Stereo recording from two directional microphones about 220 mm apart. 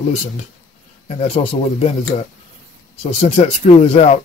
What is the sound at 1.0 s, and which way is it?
Speech, 30° left (ahead or behind).